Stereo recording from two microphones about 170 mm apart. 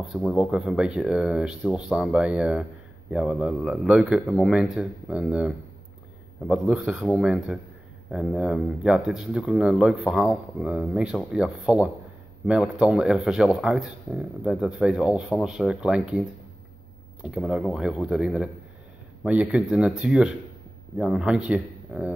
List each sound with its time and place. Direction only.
0.0 s speech: centre (ahead or behind)